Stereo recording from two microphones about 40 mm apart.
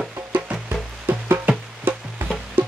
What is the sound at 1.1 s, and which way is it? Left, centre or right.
Music, right.